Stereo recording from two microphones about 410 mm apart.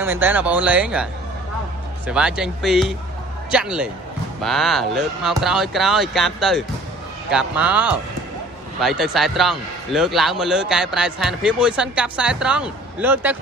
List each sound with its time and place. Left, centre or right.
0.0 s a man's voice: centre
2.0 s a man's voice: centre